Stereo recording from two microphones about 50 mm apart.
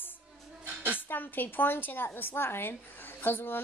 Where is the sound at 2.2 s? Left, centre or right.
Left.